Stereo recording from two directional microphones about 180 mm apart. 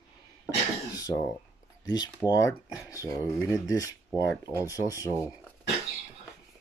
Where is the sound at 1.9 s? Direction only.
20° left (ahead or behind).